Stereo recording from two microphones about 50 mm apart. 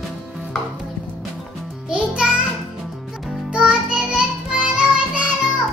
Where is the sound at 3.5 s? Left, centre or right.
Centre.